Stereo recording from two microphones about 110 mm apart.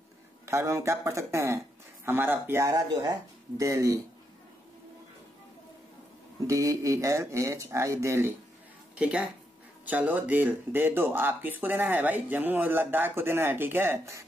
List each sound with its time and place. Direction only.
0.5 s speech: 25° right (ahead or behind)
2.7 s speech: 40° right (ahead or behind)
6.4 s speech: 30° right (ahead or behind)
8.9 s speech: 10° right (ahead or behind)